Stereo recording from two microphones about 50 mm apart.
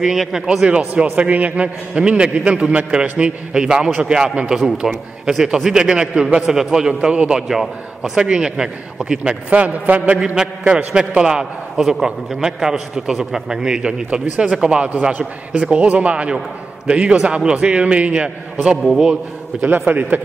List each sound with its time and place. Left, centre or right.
0.0 s a man's voice: centre
7.4 s a man's voice: centre
9.5 s a man's voice: right
10.1 s a man's voice: centre
18.8 s a man's voice: centre
19.5 s a man's voice: centre
19.9 s speech: right